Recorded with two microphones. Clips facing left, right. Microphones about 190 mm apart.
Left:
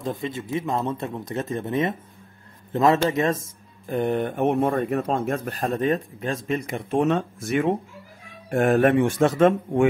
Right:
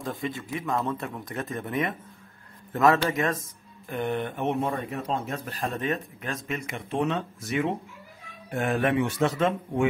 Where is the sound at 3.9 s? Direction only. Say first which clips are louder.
Left 5 dB; 35° left (ahead or behind).